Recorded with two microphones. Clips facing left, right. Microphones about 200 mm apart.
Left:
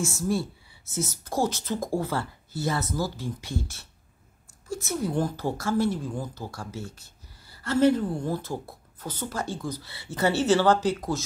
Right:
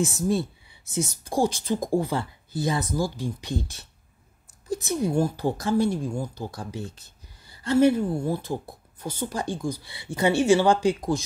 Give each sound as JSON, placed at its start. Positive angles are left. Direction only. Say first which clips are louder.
{"t": 0.0, "sound": "a woman's voice", "louder": "right 3 dB", "side_deg": -20}